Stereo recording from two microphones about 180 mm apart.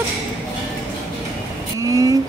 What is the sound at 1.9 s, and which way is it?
Vehicle, 20° right (ahead or behind).